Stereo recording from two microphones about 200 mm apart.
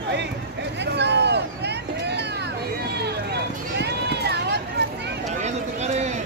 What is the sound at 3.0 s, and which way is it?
Run, 55° right (ahead or behind).